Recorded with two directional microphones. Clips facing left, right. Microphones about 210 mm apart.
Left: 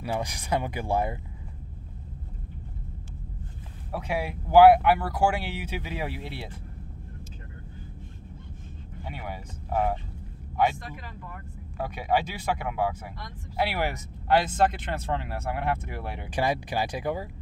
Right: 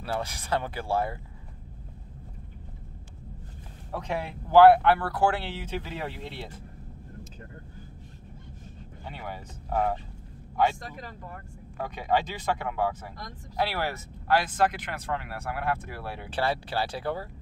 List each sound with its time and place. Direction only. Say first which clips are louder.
0.0 s speech: left 1 dB; 15° left (ahead or behind)
3.9 s speech: left 2 dB; 5° left (ahead or behind)
9.0 s speech: left 1 dB; 10° left (ahead or behind)
10.8 s speech: right 1 dB; 40° right (ahead or behind)
11.8 s speech: left 1 dB; 10° left (ahead or behind)